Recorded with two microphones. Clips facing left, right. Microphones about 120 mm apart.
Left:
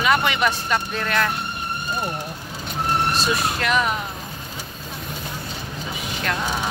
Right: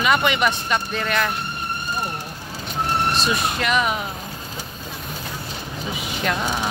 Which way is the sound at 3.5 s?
5° right (ahead or behind).